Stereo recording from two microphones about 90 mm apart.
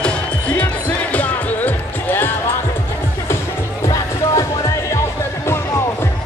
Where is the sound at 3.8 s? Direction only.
40° left (ahead or behind).